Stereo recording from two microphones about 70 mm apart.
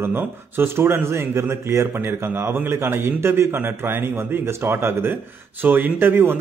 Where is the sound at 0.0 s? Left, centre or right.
Right.